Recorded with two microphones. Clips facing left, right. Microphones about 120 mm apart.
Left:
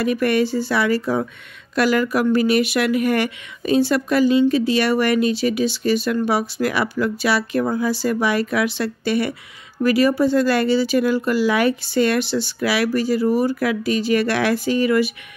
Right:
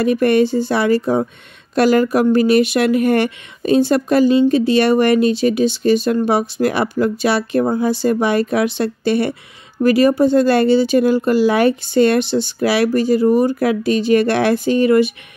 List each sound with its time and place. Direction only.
0.0 s a woman's voice: 30° right (ahead or behind)